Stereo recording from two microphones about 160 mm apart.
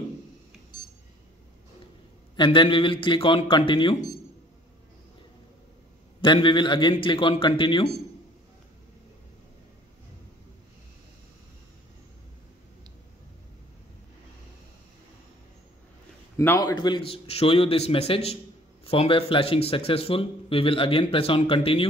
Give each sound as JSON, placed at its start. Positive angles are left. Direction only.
{"t": 2.3, "sound": "speech", "side_deg": 30}
{"t": 6.2, "sound": "speech", "side_deg": 30}
{"t": 16.3, "sound": "speech", "side_deg": 20}